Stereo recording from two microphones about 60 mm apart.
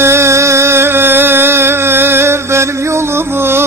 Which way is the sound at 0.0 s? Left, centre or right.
Right.